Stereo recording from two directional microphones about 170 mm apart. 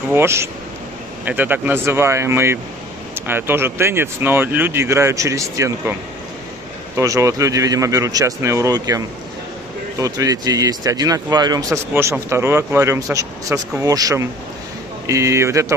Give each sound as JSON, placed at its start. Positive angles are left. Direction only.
{"t": 0.1, "sound": "speech", "side_deg": -15}
{"t": 7.0, "sound": "speech", "side_deg": -15}